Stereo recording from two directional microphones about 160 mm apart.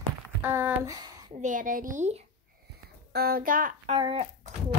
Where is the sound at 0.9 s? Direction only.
25° right (ahead or behind).